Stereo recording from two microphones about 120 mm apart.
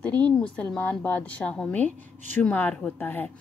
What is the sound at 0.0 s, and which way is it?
A woman's voice, 10° left (ahead or behind).